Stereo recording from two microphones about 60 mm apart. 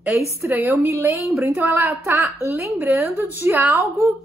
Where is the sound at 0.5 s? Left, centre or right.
Right.